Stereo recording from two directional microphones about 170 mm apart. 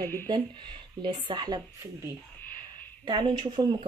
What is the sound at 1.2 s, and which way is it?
Speech, 25° right (ahead or behind).